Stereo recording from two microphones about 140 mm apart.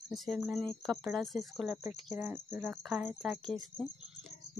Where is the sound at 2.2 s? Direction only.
20° right (ahead or behind).